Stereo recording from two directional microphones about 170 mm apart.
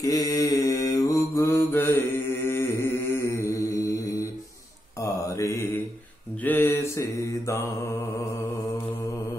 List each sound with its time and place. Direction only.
0.0 s mantra: 20° left (ahead or behind)